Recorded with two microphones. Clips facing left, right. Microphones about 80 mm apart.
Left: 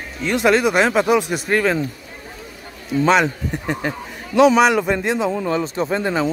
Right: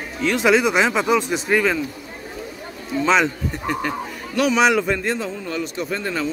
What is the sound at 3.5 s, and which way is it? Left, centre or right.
Speech, centre.